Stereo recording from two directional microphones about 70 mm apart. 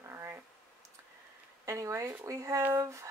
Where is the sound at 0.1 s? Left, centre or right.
Right.